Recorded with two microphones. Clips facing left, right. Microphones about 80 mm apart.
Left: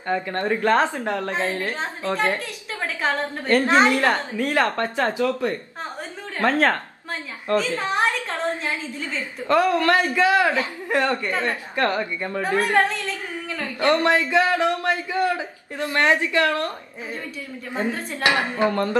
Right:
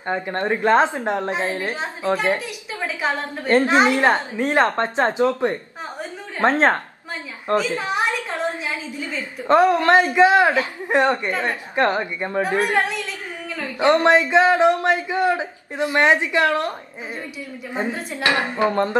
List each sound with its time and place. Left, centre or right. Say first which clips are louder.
0.0 s a man's voice: right 1 dB; right
7.5 s a sound: right 1 dB; centre
9.5 s a man's voice: right 4 dB; right
17.7 s a man's voice: even; centre